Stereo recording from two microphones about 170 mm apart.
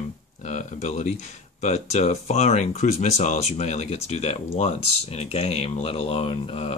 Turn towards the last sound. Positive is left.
turn(degrees=35)  # may be behind; listen again after turning